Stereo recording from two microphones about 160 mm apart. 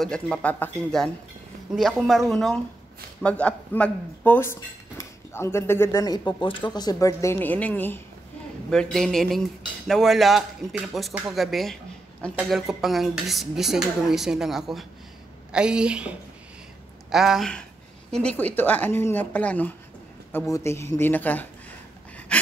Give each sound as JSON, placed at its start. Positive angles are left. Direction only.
{"t": 0.0, "sound": "cutlery", "side_deg": 5}
{"t": 3.2, "sound": "speech", "side_deg": 5}
{"t": 8.6, "sound": "cutlery", "side_deg": 5}
{"t": 15.5, "sound": "speech", "side_deg": -5}
{"t": 17.1, "sound": "cutlery", "side_deg": 0}
{"t": 18.1, "sound": "speech", "side_deg": 10}
{"t": 22.3, "sound": "a sound", "side_deg": 5}